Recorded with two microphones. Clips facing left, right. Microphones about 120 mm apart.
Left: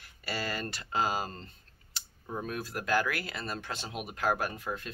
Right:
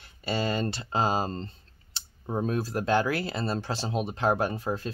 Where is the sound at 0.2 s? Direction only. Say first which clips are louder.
Right 7 dB; 25° right (ahead or behind).